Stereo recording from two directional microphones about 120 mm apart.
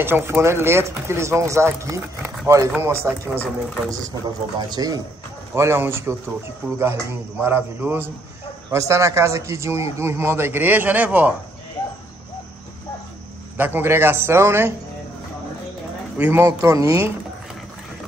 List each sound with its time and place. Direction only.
0.0 s a man's voice: 20° right (ahead or behind)
5.5 s speech: 20° right (ahead or behind)
13.6 s speech: 15° right (ahead or behind)
16.2 s speech: 15° right (ahead or behind)